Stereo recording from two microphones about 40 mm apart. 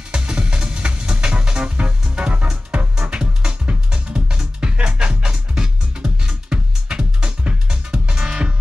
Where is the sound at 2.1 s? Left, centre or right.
Right.